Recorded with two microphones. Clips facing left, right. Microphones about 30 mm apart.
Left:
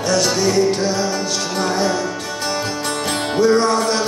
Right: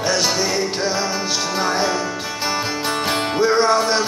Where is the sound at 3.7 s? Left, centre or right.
Centre.